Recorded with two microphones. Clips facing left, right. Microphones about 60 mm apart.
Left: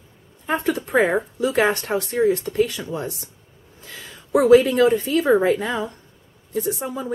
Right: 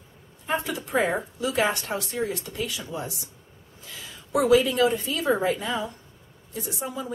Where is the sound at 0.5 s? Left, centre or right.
Left.